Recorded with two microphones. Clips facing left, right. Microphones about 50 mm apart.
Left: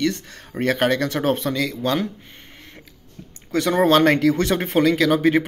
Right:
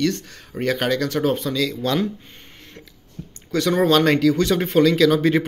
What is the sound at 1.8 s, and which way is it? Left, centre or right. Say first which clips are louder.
Speech: even; left.